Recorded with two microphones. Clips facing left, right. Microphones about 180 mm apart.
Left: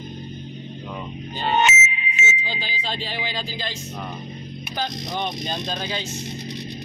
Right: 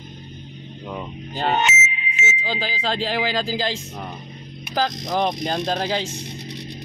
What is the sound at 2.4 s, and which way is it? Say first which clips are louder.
Speech: right 5 dB; 90° right.